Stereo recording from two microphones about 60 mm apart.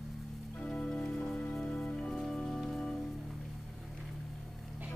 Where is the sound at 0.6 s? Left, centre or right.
Centre.